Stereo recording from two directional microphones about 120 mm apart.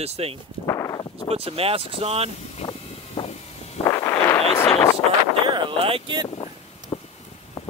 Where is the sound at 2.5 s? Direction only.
55° left (ahead or behind).